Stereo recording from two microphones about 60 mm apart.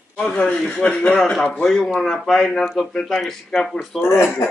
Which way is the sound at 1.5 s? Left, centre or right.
Centre.